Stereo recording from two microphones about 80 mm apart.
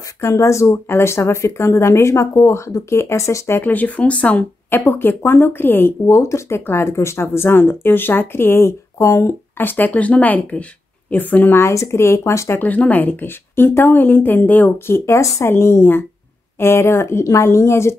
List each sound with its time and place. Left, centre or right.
0.2 s speech: left
3.7 s speech: centre
8.9 s speech: left
9.6 s speech: left
12.6 s speech: left
15.0 s speech: left